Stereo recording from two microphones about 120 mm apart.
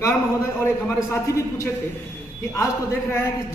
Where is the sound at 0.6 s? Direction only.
20° left (ahead or behind).